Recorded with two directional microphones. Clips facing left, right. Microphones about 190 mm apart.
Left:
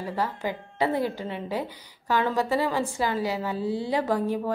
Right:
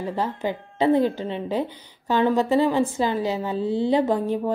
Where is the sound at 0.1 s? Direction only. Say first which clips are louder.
Right 1 dB; 20° right (ahead or behind).